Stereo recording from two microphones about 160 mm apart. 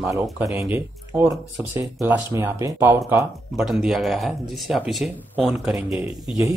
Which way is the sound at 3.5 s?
Centre (ahead or behind).